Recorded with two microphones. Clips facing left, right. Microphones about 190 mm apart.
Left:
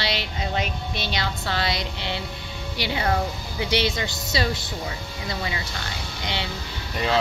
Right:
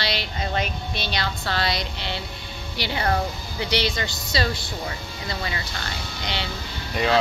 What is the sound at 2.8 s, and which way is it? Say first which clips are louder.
Speech: even; 10° left (ahead or behind).